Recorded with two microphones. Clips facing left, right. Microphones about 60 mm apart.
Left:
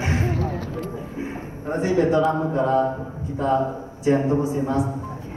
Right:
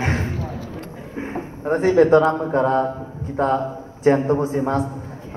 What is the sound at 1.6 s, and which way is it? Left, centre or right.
Speech, right.